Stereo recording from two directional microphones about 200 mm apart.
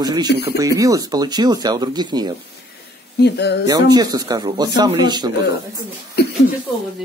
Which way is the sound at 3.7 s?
20° right (ahead or behind).